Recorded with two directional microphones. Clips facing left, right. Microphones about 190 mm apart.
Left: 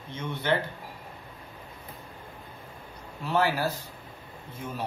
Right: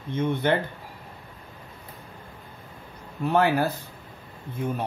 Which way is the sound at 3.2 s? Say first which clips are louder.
Right 4 dB; 55° right (ahead or behind).